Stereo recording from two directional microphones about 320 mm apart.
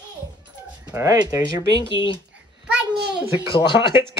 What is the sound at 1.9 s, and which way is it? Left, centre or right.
Speech, centre.